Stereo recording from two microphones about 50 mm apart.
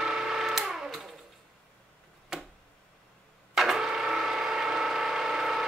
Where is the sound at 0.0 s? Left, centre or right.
Centre.